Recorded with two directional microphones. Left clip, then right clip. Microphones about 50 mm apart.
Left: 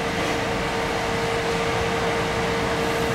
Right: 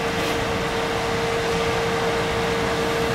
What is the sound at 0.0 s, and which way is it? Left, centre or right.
Vehicle, centre.